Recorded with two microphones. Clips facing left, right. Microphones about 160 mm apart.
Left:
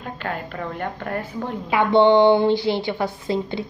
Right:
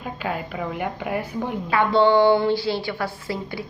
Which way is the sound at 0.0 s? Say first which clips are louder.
Right 1 dB; 5° right (ahead or behind).